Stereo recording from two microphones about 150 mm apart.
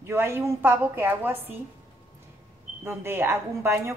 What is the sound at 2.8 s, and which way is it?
A woman's voice, 15° right (ahead or behind).